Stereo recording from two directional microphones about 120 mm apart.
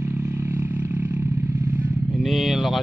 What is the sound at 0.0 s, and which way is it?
Vehicle, 20° right (ahead or behind).